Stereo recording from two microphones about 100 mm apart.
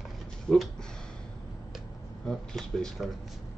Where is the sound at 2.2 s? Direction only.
5° left (ahead or behind).